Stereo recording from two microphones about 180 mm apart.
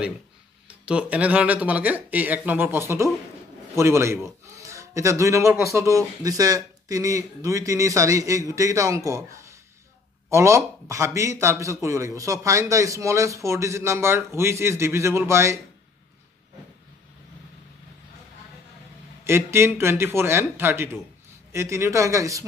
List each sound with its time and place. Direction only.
0.7 s a man's voice: 5° right (ahead or behind)
19.2 s a man's voice: 15° right (ahead or behind)